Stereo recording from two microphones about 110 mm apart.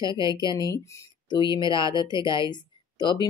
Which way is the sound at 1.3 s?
45° left (ahead or behind).